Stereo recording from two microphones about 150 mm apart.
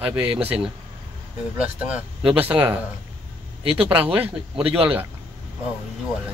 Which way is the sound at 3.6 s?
40° right (ahead or behind).